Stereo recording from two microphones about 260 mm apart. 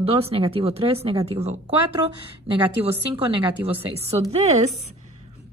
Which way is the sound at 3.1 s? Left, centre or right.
Right.